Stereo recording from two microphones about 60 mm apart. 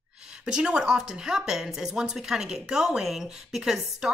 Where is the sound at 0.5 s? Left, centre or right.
Centre.